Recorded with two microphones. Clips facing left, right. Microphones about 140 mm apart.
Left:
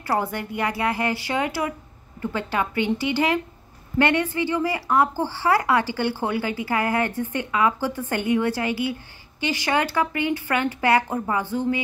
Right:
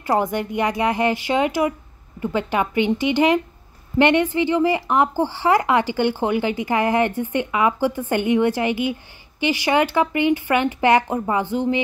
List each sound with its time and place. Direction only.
0.0 s speech: 15° right (ahead or behind)